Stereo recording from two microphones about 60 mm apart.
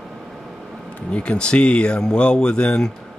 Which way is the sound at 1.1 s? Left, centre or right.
Centre.